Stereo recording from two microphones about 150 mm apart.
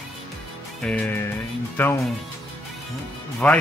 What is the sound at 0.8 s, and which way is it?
Music, 10° left (ahead or behind).